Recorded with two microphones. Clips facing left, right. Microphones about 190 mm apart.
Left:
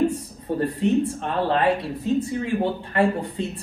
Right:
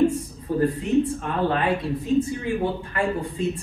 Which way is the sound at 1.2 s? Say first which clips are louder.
Left 2 dB; 30° left (ahead or behind).